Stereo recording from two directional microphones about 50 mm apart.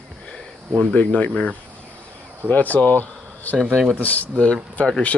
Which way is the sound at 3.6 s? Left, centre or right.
Centre.